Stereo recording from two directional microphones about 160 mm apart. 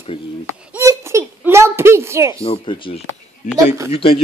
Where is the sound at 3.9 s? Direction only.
35° left (ahead or behind).